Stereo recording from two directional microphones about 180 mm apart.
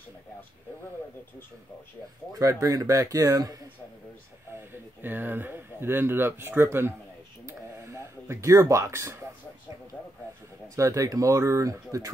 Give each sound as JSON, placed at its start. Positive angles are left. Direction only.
{"t": 2.3, "sound": "speech", "side_deg": -20}
{"t": 5.0, "sound": "speech", "side_deg": -10}
{"t": 10.8, "sound": "speech", "side_deg": -20}